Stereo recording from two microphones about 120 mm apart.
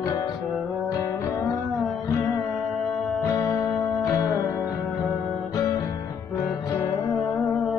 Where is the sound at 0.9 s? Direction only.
25° left (ahead or behind).